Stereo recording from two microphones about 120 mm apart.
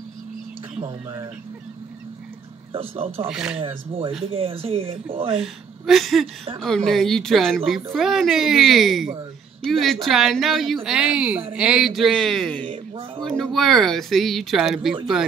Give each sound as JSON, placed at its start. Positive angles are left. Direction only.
{"t": 0.7, "sound": "speech", "side_deg": -45}
{"t": 2.7, "sound": "speech", "side_deg": -50}
{"t": 3.3, "sound": "a woman's voice", "side_deg": -5}
{"t": 3.5, "sound": "speech", "side_deg": -50}
{"t": 5.3, "sound": "a woman's voice", "side_deg": -5}